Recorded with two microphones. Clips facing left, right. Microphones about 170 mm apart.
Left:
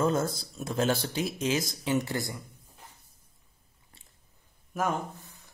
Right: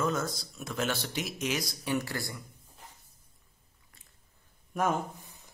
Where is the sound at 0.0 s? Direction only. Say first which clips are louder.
Left 4 dB; 30° left (ahead or behind).